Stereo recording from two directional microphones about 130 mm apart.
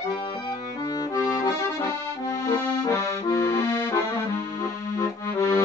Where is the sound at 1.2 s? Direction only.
20° left (ahead or behind).